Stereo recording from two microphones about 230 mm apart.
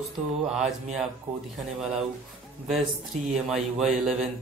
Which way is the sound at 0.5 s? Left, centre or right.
Centre.